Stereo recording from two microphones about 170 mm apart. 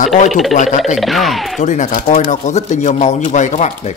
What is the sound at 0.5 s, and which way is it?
Speech, 45° left (ahead or behind).